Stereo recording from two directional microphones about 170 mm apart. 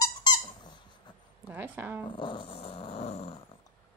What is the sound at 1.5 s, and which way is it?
Zipper, 10° right (ahead or behind).